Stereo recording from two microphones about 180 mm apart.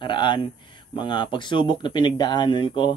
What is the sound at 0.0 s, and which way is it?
A man's voice, 25° left (ahead or behind).